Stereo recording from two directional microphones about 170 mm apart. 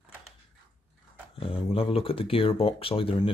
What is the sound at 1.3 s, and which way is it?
Speech, 35° left (ahead or behind).